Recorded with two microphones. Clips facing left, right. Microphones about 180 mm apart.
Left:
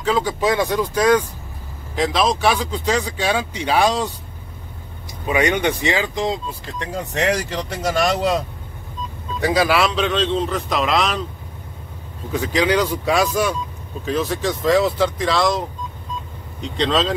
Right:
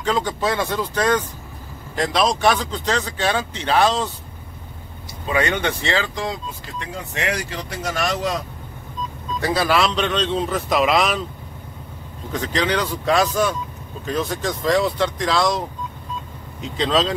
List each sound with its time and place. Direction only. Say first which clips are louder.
0.0 s speech: left 2 dB; 5° left (ahead or behind)
5.2 s speech: left 3 dB; 15° left (ahead or behind)
6.9 s speech: left 5 dB; 40° left (ahead or behind)
9.4 s a man's voice: left 2 dB; 15° left (ahead or behind); by 11.2 s 5° right (ahead or behind)
12.3 s a man's voice: left 3 dB; 10° left (ahead or behind)
16.6 s a man's voice: even; centre (ahead or behind)